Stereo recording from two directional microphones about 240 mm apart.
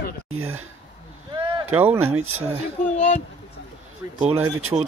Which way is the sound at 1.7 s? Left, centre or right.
Centre.